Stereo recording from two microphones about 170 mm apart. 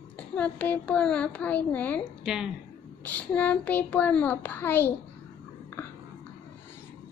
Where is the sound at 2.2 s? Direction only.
5° right (ahead or behind).